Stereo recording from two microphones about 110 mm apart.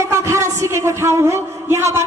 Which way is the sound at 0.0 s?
25° right (ahead or behind).